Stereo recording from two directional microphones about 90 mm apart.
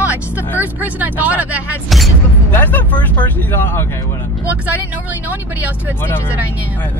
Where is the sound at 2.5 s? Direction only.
20° left (ahead or behind).